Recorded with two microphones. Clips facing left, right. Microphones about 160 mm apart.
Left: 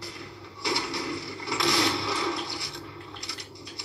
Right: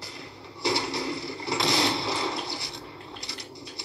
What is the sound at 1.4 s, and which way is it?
Sewing machine, 25° right (ahead or behind).